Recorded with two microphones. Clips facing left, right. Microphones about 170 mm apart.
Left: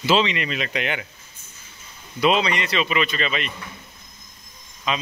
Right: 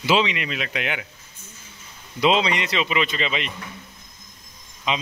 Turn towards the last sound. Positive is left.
turn(degrees=-20)  # may be behind; listen again after turning